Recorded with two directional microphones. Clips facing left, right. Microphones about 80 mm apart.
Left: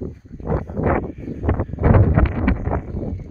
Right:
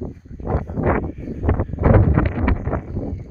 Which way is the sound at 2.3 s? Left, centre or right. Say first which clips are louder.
Left 1 dB; centre.